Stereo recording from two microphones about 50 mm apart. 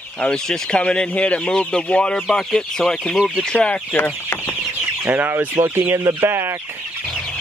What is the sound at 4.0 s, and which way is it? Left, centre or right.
Chicken, left.